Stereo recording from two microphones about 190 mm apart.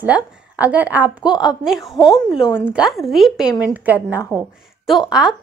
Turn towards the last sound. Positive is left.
turn(degrees=-5)  # may be behind; listen again after turning